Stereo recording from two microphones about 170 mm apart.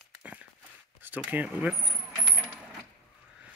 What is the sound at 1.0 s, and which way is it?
Speech, 10° right (ahead or behind).